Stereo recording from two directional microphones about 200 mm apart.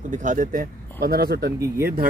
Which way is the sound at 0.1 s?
40° right (ahead or behind).